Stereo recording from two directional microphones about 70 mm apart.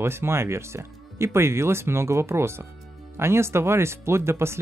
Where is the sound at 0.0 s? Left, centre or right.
Right.